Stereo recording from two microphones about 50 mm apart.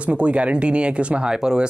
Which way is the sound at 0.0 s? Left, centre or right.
Right.